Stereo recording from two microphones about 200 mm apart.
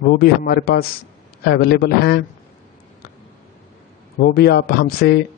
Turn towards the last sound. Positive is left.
turn(degrees=50)  # may be behind; listen again after turning